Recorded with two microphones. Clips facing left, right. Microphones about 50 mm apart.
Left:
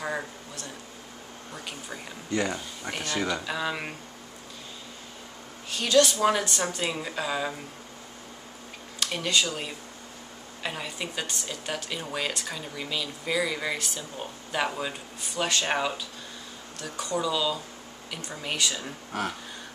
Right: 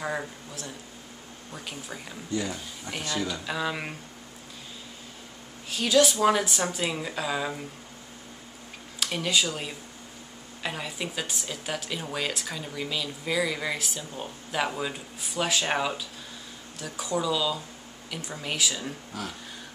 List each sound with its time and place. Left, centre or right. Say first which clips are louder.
0.0 s a sound: even; centre
1.5 s a woman's voice: even; centre
2.3 s speech: left 3 dB; left
3.0 s speech: left 2 dB; left
3.4 s a woman's voice: even; centre
5.7 s a woman's voice: even; centre
9.0 s a woman's voice: even; centre